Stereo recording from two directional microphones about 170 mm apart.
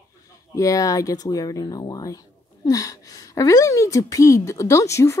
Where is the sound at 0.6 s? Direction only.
20° left (ahead or behind).